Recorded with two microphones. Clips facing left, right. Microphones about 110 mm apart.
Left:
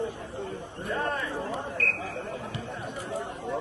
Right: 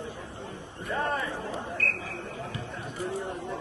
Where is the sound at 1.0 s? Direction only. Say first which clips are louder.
Right 1 dB; centre (ahead or behind).